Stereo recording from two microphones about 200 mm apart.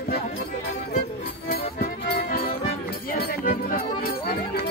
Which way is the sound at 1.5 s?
45° left (ahead or behind).